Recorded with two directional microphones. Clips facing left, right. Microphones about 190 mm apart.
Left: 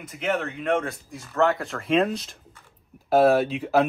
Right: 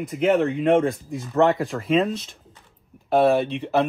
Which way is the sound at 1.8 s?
Centre (ahead or behind).